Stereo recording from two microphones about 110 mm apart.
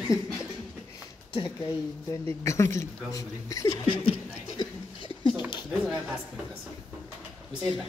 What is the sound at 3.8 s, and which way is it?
Speech, 60° left (ahead or behind).